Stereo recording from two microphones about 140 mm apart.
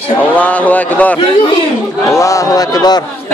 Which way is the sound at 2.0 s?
25° left (ahead or behind).